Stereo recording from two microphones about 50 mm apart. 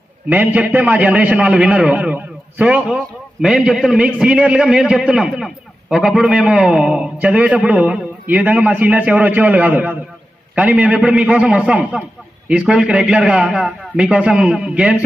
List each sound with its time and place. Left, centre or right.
0.3 s a man's voice: right
3.4 s a man's voice: centre
7.2 s a man's voice: right